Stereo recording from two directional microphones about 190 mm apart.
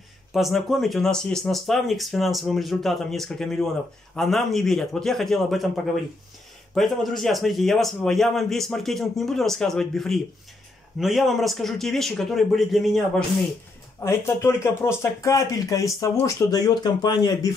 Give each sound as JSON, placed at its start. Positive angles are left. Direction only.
{"t": 0.3, "sound": "a man's voice", "side_deg": 0}
{"t": 6.7, "sound": "a man's voice", "side_deg": 0}
{"t": 13.9, "sound": "speech", "side_deg": 15}